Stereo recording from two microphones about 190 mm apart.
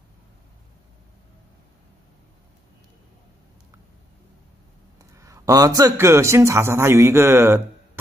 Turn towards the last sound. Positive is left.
turn(degrees=-15)  # may be behind; listen again after turning